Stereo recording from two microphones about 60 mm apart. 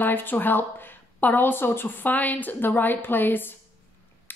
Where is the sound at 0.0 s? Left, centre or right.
Left.